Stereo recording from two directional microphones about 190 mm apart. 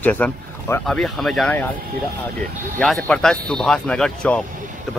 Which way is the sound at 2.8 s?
5° left (ahead or behind).